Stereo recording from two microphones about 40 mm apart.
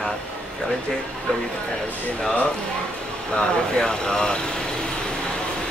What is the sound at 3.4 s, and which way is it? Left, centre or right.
Speech, centre.